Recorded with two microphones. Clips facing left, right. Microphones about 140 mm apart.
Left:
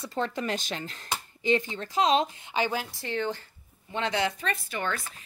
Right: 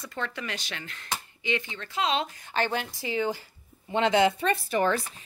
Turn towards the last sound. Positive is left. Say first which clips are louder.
# right 7 dB
turn(degrees=-35)  # may be behind; listen again after turning